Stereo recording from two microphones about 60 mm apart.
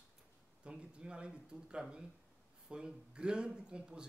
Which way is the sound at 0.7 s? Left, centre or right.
Centre.